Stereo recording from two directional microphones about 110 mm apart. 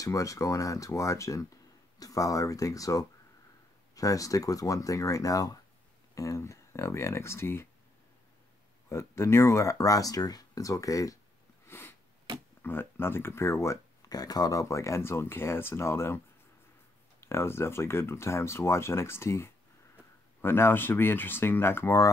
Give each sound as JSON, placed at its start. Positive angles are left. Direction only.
{"t": 0.0, "sound": "speech", "side_deg": 30}
{"t": 8.8, "sound": "speech", "side_deg": 25}
{"t": 11.6, "sound": "sniff", "side_deg": 20}
{"t": 12.6, "sound": "speech", "side_deg": 20}
{"t": 14.0, "sound": "speech", "side_deg": 35}
{"t": 17.2, "sound": "speech", "side_deg": 25}